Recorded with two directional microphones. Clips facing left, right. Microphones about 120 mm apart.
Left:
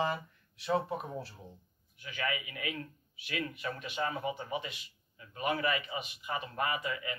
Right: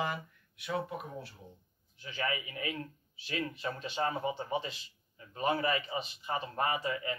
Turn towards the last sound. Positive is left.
turn(degrees=-30)  # may be behind; listen again after turning